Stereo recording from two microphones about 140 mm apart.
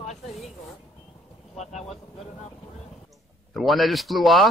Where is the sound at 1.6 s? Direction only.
50° left (ahead or behind).